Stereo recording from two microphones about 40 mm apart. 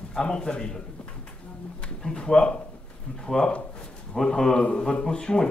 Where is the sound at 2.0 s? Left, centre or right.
Left.